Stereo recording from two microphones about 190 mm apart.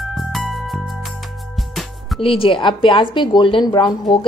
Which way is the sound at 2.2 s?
30° left (ahead or behind).